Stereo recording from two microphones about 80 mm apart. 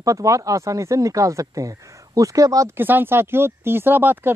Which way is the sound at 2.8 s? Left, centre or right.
Right.